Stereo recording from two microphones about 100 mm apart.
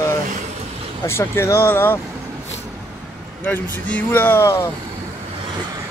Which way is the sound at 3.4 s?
15° left (ahead or behind).